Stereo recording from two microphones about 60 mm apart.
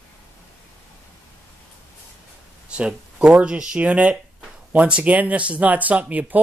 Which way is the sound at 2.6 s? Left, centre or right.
Centre.